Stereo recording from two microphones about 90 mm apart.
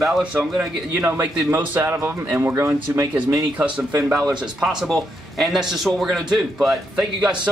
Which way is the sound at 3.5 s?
15° right (ahead or behind).